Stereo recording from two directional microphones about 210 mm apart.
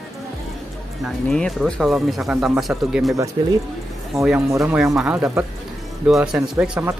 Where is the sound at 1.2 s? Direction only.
Centre (ahead or behind).